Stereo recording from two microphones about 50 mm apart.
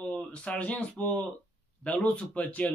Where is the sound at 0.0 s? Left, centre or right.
Left.